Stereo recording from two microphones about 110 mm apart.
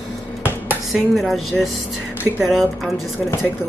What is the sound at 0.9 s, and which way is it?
Speech, centre (ahead or behind).